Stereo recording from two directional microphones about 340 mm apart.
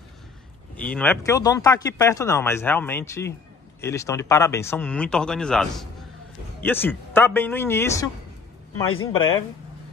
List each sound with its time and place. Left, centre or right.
0.7 s speech: centre
8.8 s speech: left
9.1 s speech: centre